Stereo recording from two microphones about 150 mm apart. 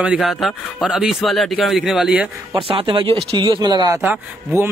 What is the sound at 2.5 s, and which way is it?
Speech, 35° right (ahead or behind).